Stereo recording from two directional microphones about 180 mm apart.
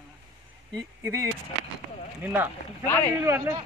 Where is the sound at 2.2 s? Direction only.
10° right (ahead or behind).